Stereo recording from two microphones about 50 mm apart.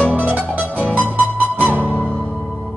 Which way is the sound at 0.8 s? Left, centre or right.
Right.